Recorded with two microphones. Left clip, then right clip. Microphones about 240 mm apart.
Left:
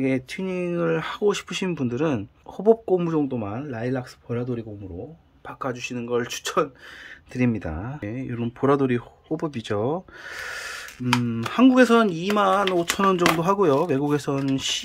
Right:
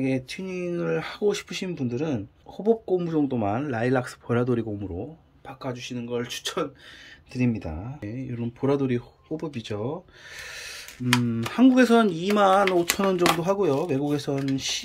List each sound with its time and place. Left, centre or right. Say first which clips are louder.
0.0 s speech: left 3 dB; centre
5.5 s speech: left 4 dB; centre